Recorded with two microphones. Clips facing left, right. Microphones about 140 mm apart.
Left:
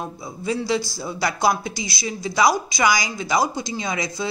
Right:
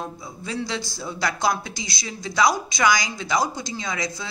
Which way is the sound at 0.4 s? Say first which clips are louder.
Left 6 dB; 10° left (ahead or behind).